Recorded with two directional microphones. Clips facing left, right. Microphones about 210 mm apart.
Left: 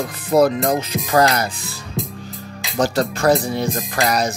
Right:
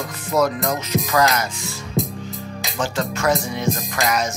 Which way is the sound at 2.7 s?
35° left (ahead or behind).